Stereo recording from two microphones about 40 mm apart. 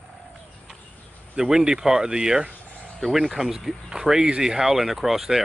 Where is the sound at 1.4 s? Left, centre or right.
Centre.